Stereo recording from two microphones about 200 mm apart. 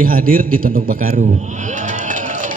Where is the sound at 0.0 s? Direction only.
45° right (ahead or behind).